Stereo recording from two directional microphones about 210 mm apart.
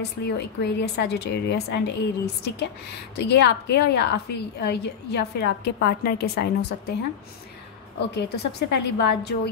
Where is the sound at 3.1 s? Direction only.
50° left (ahead or behind).